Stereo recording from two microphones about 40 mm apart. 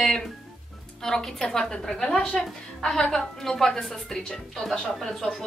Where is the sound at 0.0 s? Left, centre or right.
Centre.